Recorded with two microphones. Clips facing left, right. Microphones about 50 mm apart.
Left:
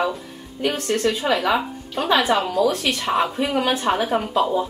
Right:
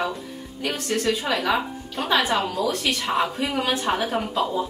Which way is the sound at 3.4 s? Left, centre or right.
Centre.